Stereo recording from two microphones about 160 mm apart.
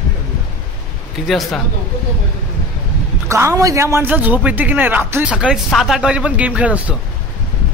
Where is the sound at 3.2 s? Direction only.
15° right (ahead or behind).